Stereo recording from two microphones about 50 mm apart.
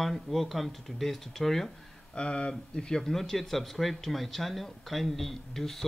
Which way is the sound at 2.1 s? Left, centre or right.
Centre.